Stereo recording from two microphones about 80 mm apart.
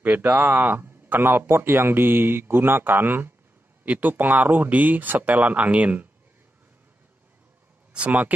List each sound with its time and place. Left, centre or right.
0.0 s speech: centre
7.9 s speech: centre